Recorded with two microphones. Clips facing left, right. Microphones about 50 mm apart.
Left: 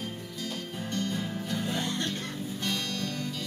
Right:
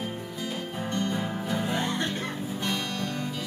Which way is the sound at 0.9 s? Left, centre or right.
Centre.